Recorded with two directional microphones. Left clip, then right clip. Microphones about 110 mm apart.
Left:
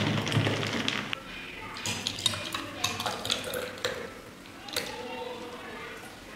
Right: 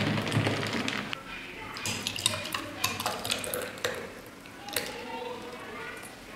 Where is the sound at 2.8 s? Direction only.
10° right (ahead or behind).